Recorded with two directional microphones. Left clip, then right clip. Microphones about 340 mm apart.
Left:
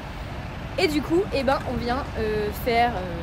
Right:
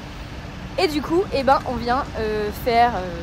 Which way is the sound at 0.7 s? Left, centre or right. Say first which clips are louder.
Right 2 dB; centre.